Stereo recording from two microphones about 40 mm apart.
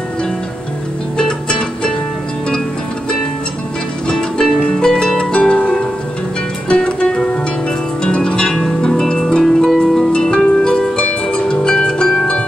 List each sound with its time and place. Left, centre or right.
1.1 s music: left
4.1 s harp: centre
6.7 s music: left
8.0 s harp: left
9.4 s harp: centre
9.8 s music: centre
10.1 s harp: left
11.3 s music: left